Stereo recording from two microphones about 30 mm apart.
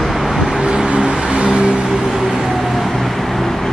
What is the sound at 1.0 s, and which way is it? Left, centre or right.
Vehicle, right.